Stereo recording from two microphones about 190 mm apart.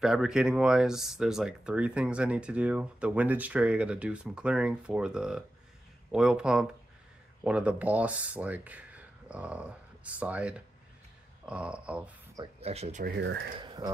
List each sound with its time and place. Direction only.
0.0 s speech: 5° right (ahead or behind)
12.5 s speech: 35° right (ahead or behind)
13.0 s speech: 65° right (ahead or behind)
13.6 s speech: 20° right (ahead or behind)